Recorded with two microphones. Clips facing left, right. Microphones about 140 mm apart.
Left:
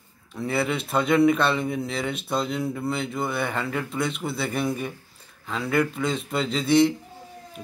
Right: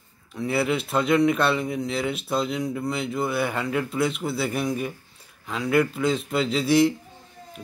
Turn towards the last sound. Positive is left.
turn(degrees=-5)  # may be behind; listen again after turning